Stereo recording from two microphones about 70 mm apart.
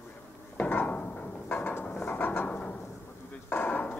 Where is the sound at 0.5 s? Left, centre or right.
Left.